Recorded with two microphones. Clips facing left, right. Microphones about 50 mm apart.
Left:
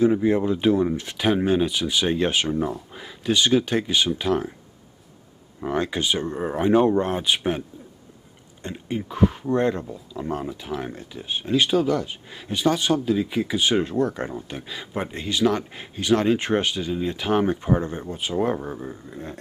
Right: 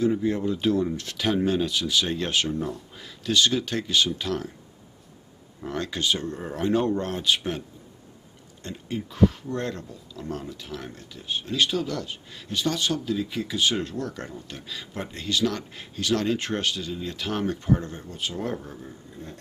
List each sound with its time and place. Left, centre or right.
0.0 s speech: left
5.6 s speech: left
8.6 s speech: left
18.6 s speech: left